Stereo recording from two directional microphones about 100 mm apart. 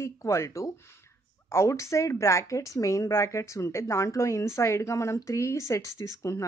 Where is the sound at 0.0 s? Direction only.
30° left (ahead or behind).